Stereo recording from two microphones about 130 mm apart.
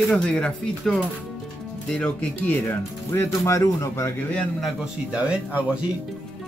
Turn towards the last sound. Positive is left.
turn(degrees=-10)  # may be behind; listen again after turning